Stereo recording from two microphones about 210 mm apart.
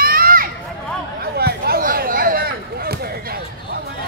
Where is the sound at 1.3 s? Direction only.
50° right (ahead or behind).